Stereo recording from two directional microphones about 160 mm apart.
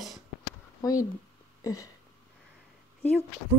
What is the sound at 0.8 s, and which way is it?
Speech, 20° left (ahead or behind).